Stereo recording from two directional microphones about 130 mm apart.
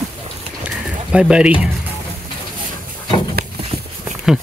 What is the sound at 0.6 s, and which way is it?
Pigeon, 10° right (ahead or behind).